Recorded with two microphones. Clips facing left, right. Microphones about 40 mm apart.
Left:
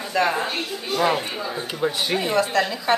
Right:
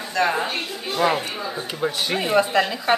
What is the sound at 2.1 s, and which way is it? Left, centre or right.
Speech, centre.